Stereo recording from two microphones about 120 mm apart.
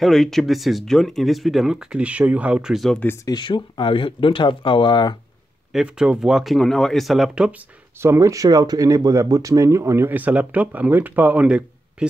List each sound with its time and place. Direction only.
0.0 s speech: centre (ahead or behind)
3.3 s speech: 40° left (ahead or behind)
5.7 s speech: 5° right (ahead or behind)
8.0 s speech: 25° right (ahead or behind)